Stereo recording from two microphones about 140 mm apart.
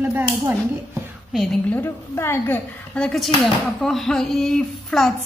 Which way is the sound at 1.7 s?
15° left (ahead or behind).